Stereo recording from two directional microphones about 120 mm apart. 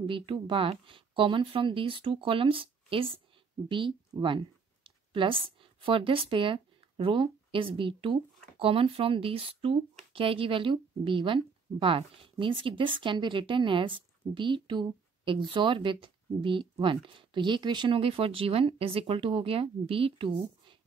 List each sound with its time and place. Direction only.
0.0 s a woman's voice: 45° right (ahead or behind)